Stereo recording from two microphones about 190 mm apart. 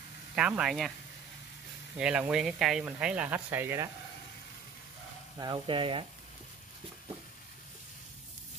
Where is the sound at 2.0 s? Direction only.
5° right (ahead or behind).